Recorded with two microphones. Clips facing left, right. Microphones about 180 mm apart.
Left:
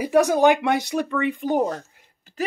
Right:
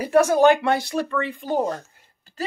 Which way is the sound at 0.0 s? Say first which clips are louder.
Right 1 dB; 15° left (ahead or behind).